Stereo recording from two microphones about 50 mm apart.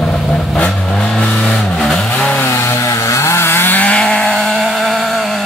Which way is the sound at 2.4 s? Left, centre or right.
Left.